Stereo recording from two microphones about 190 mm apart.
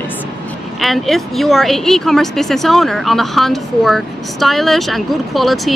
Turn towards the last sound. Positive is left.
turn(degrees=0)  # may be behind; listen again after turning